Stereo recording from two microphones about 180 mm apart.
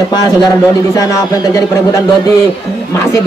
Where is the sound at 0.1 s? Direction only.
20° left (ahead or behind).